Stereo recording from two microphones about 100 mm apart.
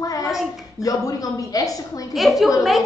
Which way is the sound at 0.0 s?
35° left (ahead or behind).